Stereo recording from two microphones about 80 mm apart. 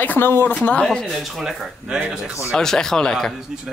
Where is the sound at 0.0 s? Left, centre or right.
Left.